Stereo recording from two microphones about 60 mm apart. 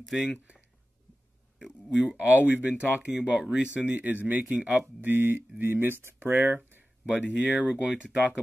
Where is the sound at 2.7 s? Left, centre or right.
Centre; by 6.8 s right.